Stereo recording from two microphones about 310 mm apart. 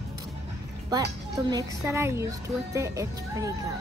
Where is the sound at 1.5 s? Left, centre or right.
Centre.